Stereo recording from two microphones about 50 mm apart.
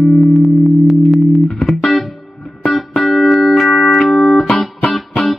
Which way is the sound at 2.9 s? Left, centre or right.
Centre.